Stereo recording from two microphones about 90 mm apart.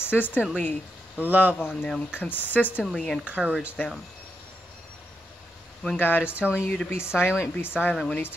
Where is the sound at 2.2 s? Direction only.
20° left (ahead or behind).